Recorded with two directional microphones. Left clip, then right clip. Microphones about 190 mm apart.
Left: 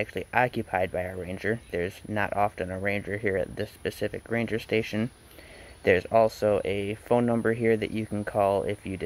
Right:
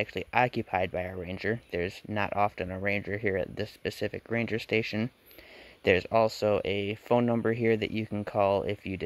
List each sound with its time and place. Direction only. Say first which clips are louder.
0.0 s speech: left 1 dB; 30° right (ahead or behind)